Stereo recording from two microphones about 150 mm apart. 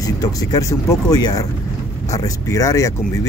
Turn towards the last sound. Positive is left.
turn(degrees=20)  # may be behind; listen again after turning